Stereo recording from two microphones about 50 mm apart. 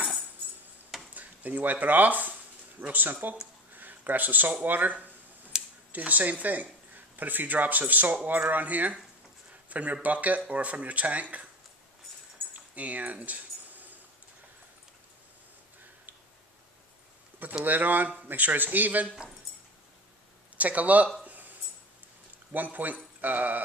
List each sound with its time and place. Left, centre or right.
1.1 s speech: right
3.7 s a sound: right
4.6 s speech: right
5.5 s a sound: centre
5.9 s speech: right
9.5 s a sound: right
10.0 s speech: right
12.5 s keys jangling: right
17.6 s speech: right
20.5 s speech: right
22.5 s speech: right